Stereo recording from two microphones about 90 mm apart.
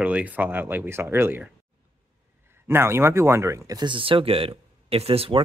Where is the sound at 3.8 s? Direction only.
65° right (ahead or behind); by 5.4 s 90° right.